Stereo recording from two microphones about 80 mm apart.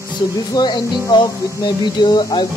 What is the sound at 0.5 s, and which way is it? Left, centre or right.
Speech, left.